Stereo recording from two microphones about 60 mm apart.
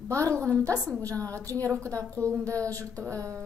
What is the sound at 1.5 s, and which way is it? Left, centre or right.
Speech, right.